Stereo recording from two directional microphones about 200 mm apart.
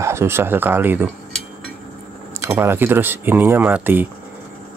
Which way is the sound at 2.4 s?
10° right (ahead or behind).